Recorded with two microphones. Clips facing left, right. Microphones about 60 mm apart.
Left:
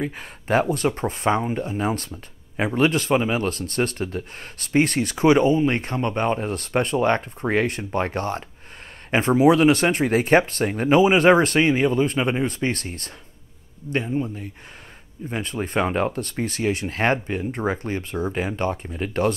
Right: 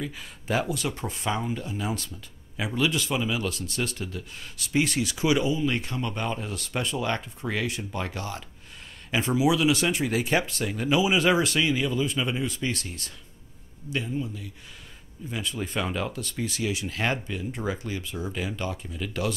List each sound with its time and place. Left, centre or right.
0.0 s speech: left